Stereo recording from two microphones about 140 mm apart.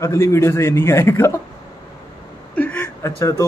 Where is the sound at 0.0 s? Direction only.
20° left (ahead or behind).